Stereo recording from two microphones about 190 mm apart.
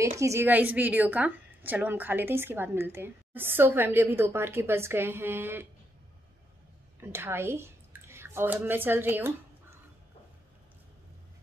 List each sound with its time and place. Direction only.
0.2 s a woman's voice: 15° right (ahead or behind)
7.0 s speech: 10° right (ahead or behind)